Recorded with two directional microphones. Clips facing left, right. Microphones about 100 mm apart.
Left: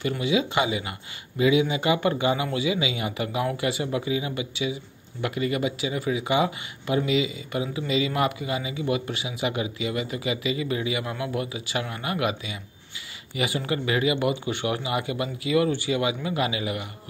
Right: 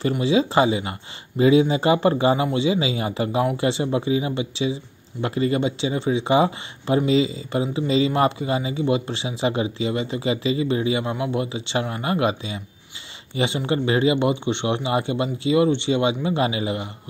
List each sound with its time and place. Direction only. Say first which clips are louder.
0.2 s speech: right 6 dB; 35° right (ahead or behind)